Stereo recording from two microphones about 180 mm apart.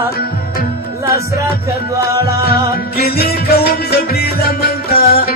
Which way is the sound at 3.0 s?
60° left (ahead or behind).